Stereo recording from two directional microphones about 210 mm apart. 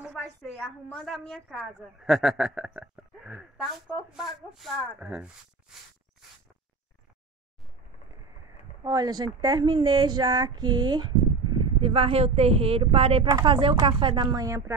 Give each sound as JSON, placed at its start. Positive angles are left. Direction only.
{"t": 0.0, "sound": "a woman's voice", "side_deg": 0}
{"t": 8.8, "sound": "speech", "side_deg": -20}